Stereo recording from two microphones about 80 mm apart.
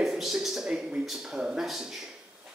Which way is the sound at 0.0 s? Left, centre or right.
Centre.